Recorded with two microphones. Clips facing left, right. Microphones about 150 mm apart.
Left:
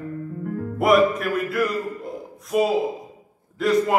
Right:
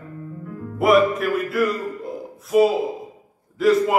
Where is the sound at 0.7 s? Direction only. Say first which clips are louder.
Right 1 dB; centre (ahead or behind).